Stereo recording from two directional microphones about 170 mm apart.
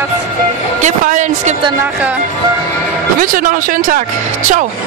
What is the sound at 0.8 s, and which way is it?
Speech, 45° right (ahead or behind).